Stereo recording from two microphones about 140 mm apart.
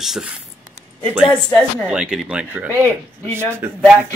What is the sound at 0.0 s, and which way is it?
Speech, 5° right (ahead or behind).